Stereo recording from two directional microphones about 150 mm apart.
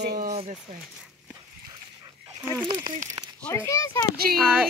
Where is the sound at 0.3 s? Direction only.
50° right (ahead or behind).